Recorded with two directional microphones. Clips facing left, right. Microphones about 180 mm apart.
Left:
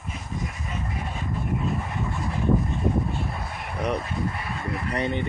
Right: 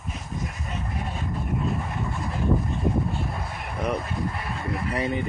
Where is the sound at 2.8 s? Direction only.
Centre (ahead or behind).